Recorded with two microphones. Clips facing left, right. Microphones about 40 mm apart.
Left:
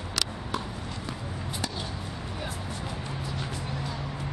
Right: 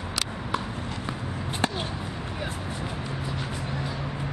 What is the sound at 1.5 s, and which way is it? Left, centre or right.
Chop, right.